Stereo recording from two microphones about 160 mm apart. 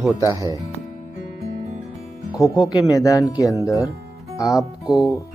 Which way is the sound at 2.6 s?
20° left (ahead or behind).